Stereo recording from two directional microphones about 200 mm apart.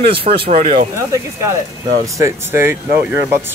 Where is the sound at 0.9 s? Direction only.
15° right (ahead or behind).